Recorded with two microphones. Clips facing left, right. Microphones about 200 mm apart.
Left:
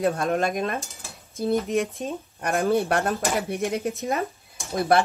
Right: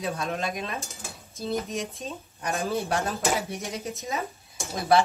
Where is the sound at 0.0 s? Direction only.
50° left (ahead or behind).